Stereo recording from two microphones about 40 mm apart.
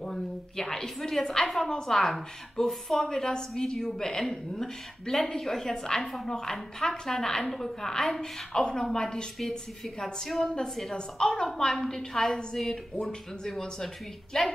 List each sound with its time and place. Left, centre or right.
0.0 s a woman's voice: centre
11.4 s speech: centre